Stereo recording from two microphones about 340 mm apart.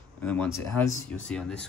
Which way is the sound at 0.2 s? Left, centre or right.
Centre.